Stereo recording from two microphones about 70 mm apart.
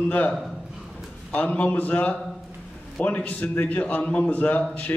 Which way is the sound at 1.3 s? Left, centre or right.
Left.